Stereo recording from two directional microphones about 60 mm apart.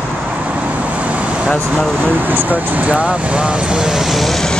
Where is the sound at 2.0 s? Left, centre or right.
Right.